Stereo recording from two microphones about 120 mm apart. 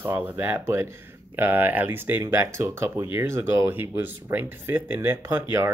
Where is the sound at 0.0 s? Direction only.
15° right (ahead or behind).